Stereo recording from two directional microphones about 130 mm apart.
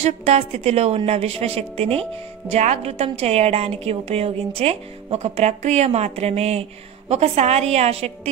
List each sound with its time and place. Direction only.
0.0 s a woman's voice: 50° right (ahead or behind)